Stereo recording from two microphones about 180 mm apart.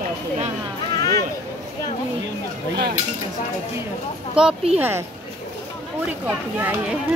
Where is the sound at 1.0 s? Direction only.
20° left (ahead or behind).